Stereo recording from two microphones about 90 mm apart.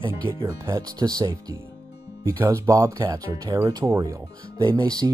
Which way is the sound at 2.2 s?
30° right (ahead or behind).